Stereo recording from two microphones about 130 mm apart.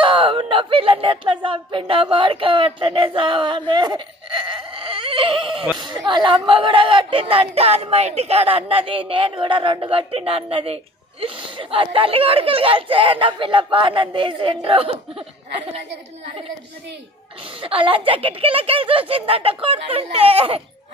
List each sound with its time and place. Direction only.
0.0 s speech: 45° right (ahead or behind)
17.6 s speech: 45° right (ahead or behind)